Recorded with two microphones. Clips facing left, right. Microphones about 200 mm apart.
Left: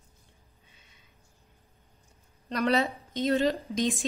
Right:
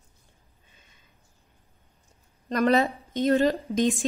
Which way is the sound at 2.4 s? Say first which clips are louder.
Right 4 dB; 45° right (ahead or behind).